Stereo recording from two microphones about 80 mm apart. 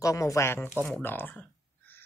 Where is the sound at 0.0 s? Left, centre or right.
Left.